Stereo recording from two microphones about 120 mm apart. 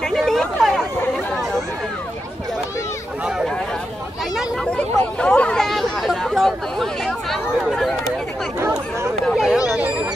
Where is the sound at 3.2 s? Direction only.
5° right (ahead or behind).